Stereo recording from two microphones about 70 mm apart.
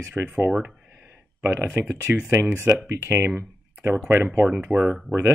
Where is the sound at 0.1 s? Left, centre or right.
Right.